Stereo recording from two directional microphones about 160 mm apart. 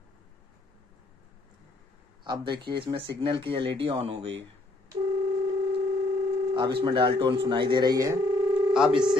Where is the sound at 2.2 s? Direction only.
30° right (ahead or behind).